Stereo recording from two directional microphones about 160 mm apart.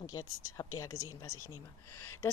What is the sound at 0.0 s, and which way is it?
A woman's voice, 25° left (ahead or behind).